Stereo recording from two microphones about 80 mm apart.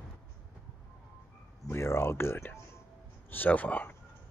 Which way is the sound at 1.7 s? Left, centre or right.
Left.